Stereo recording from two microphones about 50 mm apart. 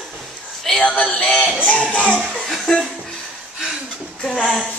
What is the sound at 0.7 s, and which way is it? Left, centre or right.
Speech, centre.